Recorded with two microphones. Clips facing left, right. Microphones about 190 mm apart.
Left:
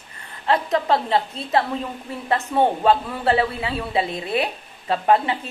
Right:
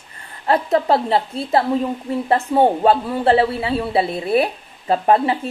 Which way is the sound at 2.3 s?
30° right (ahead or behind).